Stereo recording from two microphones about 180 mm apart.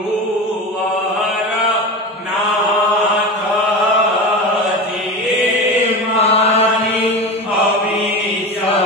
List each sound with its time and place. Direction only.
6.1 s chant: 35° left (ahead or behind)